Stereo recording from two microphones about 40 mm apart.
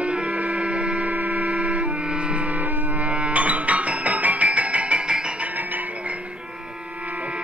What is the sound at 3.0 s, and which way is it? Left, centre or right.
Music, right.